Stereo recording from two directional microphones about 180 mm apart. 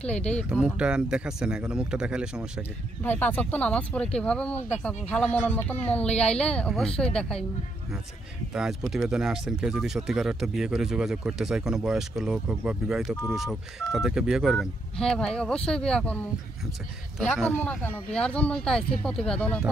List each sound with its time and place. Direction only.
0.0 s speech: 5° left (ahead or behind)
0.5 s speech: 5° right (ahead or behind)
3.0 s speech: 10° left (ahead or behind)
8.5 s speech: 5° right (ahead or behind)